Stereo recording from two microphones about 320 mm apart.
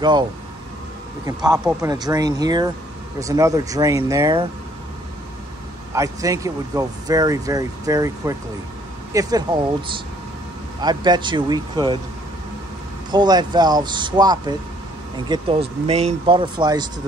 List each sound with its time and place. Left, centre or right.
1.2 s speech: centre
5.9 s speech: centre
13.1 s speech: centre